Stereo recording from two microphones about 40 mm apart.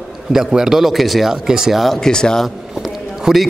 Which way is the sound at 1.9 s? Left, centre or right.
Centre.